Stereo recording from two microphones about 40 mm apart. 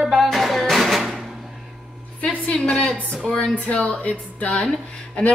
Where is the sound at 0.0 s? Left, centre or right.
Centre.